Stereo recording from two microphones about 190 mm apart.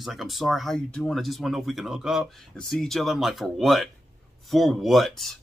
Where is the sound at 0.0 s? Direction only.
Centre (ahead or behind).